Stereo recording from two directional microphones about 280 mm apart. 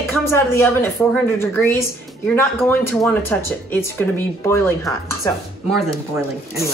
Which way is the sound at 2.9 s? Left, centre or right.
Centre.